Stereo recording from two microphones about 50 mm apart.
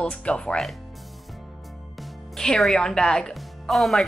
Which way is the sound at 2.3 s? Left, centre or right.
Centre.